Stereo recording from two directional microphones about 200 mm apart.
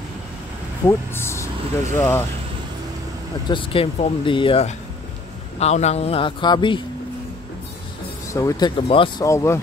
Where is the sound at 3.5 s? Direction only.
25° left (ahead or behind).